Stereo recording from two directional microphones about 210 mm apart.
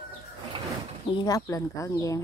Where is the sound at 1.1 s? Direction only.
15° left (ahead or behind).